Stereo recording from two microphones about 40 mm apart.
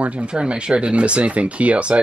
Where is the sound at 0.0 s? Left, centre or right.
Right.